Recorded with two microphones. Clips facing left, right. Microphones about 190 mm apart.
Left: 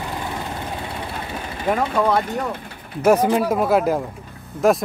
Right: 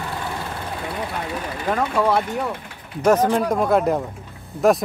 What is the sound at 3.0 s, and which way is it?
Speech, 5° left (ahead or behind).